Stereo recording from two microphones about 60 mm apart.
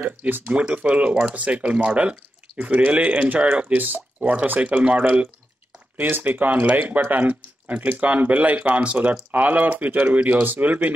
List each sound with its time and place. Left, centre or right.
0.0 s speech: right
0.5 s speech: centre
5.9 s speech: right